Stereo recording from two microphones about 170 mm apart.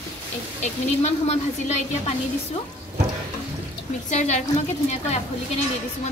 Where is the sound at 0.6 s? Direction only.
40° left (ahead or behind).